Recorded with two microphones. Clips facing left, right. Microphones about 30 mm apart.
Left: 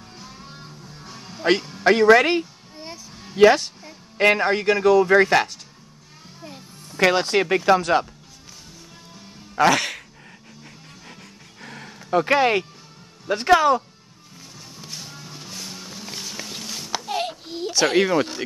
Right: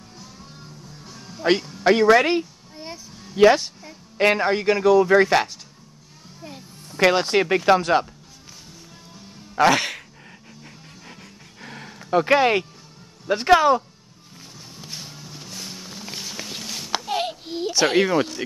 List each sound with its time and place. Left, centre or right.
0.2 s music: left
1.4 s speech: centre
1.9 s music: centre
3.3 s speech: centre
6.4 s music: centre
7.3 s speech: centre
9.6 s speech: centre
11.6 s a sound: centre
13.3 s speech: centre
14.8 s vehicle: centre
15.1 s music: centre
17.0 s a sound: centre